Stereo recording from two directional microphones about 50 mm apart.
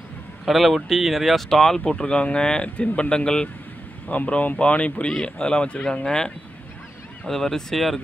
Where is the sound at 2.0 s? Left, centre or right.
Centre.